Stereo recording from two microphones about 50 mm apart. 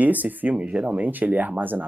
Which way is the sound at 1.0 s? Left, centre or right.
Right.